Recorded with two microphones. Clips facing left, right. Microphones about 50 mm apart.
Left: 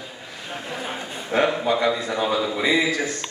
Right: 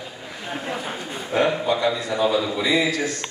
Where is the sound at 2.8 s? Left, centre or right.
Left.